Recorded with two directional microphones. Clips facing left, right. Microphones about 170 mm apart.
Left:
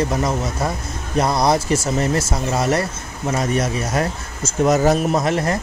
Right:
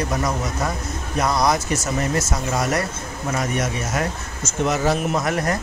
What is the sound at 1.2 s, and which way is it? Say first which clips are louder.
Speech: left 3 dB; 30° left (ahead or behind).